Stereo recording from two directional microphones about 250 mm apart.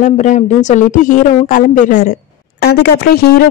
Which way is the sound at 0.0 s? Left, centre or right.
Left.